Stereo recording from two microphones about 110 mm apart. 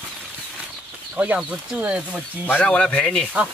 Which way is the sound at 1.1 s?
15° right (ahead or behind).